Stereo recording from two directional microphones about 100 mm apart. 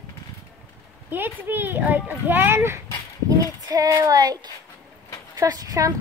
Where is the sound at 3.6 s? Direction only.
40° right (ahead or behind).